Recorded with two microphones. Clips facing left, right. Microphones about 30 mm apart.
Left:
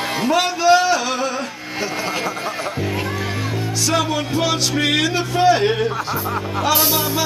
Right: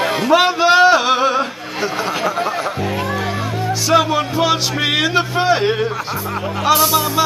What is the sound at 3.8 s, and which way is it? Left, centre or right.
Music, centre.